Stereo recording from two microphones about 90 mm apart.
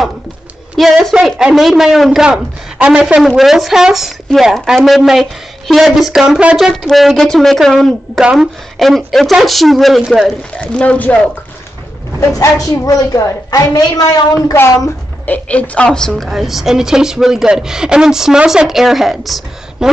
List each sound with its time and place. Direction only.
0.7 s a sound: centre (ahead or behind)
1.2 s speech: centre (ahead or behind)
3.2 s speech: centre (ahead or behind)
10.6 s a woman's voice: 15° left (ahead or behind)
12.2 s a woman's voice: 40° left (ahead or behind)
15.2 s a woman's voice: 15° left (ahead or behind)
16.2 s speech: centre (ahead or behind)